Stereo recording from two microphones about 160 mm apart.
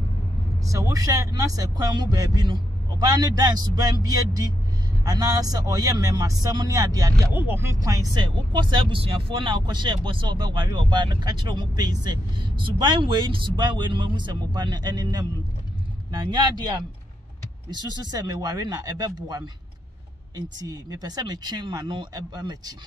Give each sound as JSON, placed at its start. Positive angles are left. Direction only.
{"t": 0.7, "sound": "speech", "side_deg": -20}
{"t": 7.3, "sound": "speech", "side_deg": -15}